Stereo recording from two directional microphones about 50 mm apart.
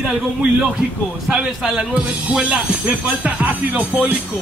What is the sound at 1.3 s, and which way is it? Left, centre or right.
Speech, centre.